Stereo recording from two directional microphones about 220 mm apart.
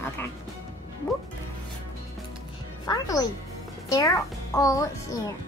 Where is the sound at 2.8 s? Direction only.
15° left (ahead or behind).